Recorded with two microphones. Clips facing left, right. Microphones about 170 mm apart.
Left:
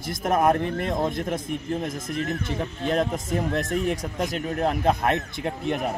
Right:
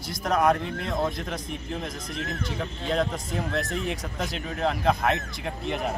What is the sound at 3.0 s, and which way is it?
Speech, 20° left (ahead or behind).